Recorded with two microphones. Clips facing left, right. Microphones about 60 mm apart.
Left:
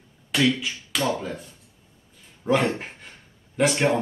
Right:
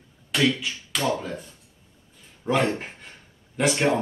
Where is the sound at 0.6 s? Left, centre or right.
Centre.